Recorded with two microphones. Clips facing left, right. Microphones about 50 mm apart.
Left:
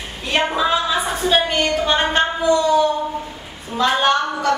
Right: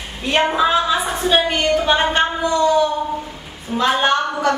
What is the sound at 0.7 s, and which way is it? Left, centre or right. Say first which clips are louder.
A woman's voice: right 2 dB; centre.